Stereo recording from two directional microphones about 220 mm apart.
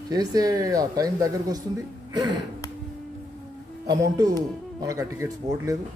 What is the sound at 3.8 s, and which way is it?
Speech, 15° right (ahead or behind).